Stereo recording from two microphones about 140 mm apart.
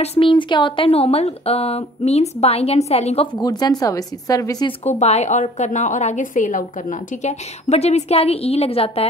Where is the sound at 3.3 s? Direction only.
30° left (ahead or behind).